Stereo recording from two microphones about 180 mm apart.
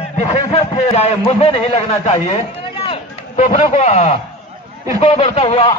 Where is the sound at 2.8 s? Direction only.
35° left (ahead or behind).